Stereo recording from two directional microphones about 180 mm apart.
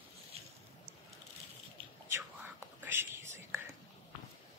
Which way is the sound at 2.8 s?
10° right (ahead or behind).